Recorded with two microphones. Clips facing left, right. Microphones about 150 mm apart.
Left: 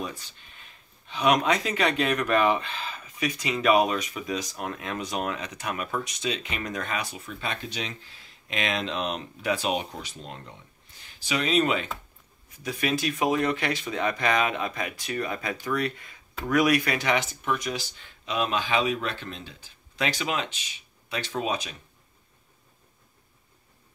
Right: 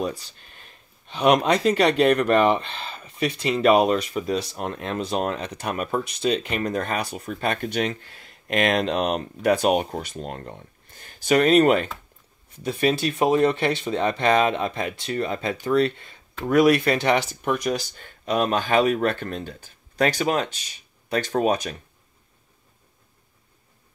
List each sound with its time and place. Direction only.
1.1 s speech: 35° right (ahead or behind)
7.2 s speech: 50° right (ahead or behind)
12.6 s speech: 30° right (ahead or behind)
17.5 s speech: 45° right (ahead or behind)